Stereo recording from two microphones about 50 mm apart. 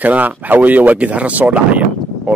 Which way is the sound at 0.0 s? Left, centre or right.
Right.